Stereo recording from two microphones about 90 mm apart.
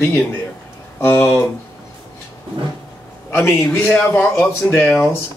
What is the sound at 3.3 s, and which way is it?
A man's voice, 25° left (ahead or behind).